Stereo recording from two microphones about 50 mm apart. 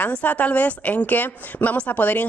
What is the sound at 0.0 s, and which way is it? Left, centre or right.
Speech, left.